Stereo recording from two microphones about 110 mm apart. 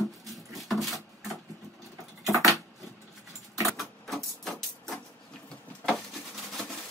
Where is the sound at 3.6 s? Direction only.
Centre (ahead or behind).